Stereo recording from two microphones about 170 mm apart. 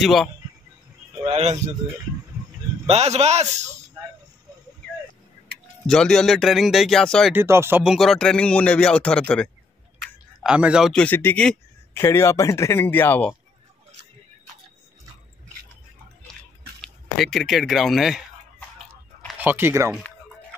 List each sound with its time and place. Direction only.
0.0 s speech: centre (ahead or behind)
1.2 s a man's voice: 40° right (ahead or behind)
2.9 s a man's voice: 40° right (ahead or behind)
5.9 s speech: 5° left (ahead or behind)
7.3 s speech: 15° right (ahead or behind)
7.8 s speech: centre (ahead or behind)
10.0 s a man's voice: 5° right (ahead or behind); by 13.4 s 10° left (ahead or behind)
16.8 s speech: centre (ahead or behind)
19.3 s speech: 10° right (ahead or behind)